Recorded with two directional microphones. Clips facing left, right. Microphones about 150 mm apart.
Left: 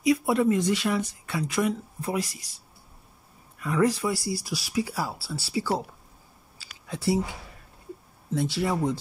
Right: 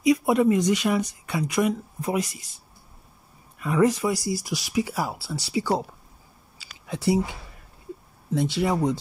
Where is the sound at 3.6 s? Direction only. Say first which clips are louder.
Right 3 dB; 20° right (ahead or behind).